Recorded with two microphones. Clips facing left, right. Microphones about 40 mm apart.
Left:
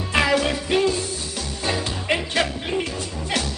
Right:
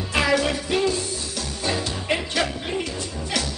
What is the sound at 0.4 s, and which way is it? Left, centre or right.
Music, centre.